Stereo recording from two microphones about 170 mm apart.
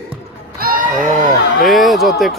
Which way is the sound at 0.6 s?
50° right (ahead or behind).